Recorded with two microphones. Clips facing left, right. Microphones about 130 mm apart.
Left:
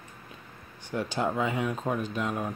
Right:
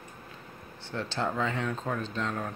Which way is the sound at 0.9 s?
15° left (ahead or behind).